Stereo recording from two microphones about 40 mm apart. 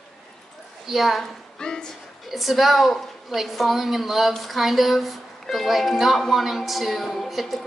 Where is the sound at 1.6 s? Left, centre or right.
Centre.